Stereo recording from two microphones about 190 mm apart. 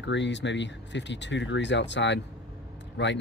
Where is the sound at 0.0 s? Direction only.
70° left (ahead or behind).